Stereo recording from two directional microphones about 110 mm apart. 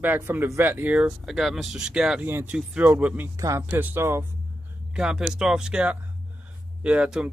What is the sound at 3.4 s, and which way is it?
Speech, 30° right (ahead or behind).